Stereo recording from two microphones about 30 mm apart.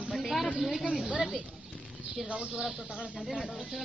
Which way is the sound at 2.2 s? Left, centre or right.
Right.